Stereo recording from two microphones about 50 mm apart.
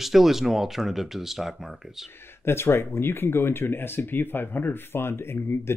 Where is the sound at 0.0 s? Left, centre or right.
Centre.